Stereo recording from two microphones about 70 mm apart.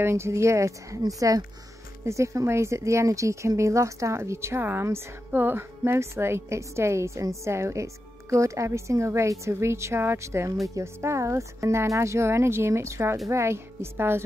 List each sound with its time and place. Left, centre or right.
0.0 s a woman's voice: right